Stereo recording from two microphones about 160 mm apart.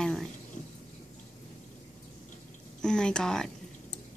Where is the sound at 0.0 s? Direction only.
5° left (ahead or behind).